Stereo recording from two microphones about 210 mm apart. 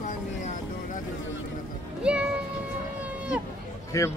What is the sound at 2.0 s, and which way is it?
Speech, 5° right (ahead or behind).